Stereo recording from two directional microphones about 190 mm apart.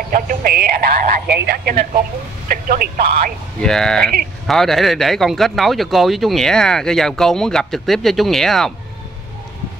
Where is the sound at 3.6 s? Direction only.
5° left (ahead or behind).